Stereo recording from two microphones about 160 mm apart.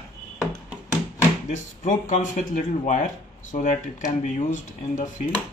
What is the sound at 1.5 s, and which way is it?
Speech, 50° left (ahead or behind).